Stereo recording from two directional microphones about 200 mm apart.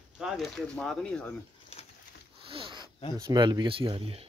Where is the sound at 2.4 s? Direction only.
25° right (ahead or behind).